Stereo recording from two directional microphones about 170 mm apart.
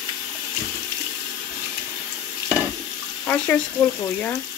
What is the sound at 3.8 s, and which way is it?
Speech, 10° left (ahead or behind).